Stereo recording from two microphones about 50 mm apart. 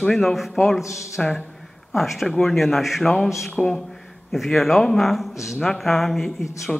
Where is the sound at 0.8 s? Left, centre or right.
Left.